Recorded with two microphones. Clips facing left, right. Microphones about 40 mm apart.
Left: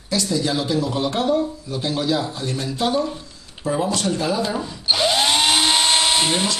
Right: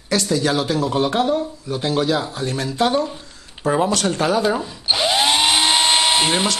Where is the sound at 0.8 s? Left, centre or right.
Right.